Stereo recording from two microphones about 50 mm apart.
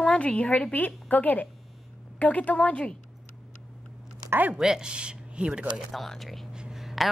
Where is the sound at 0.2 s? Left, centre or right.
Left.